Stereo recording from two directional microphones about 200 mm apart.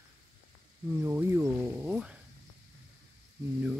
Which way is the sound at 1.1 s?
10° right (ahead or behind).